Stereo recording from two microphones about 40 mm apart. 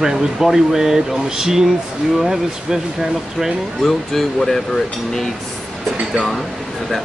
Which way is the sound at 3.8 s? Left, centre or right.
Centre.